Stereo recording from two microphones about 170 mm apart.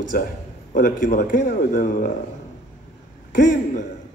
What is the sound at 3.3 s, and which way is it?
Speech, 50° left (ahead or behind).